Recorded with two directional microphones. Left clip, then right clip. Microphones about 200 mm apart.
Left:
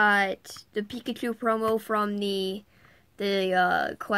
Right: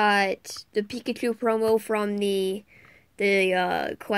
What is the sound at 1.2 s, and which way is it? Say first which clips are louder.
Speech: right 2 dB; centre (ahead or behind).